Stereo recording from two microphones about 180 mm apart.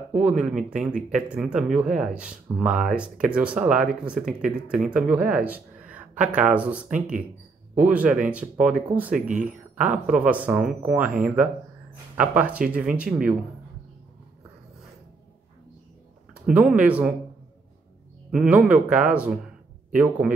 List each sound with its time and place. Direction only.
0.1 s speech: 5° right (ahead or behind)
12.2 s speech: 5° right (ahead or behind)
16.4 s speech: 5° right (ahead or behind)
18.3 s speech: 5° right (ahead or behind)